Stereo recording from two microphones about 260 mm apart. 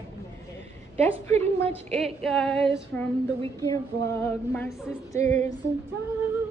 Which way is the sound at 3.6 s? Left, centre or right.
Centre.